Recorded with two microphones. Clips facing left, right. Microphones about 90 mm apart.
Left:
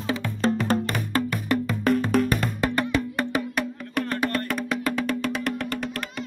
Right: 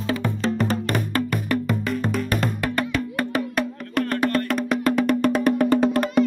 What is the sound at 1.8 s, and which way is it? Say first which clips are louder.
Music: left 4 dB; 55° left (ahead or behind).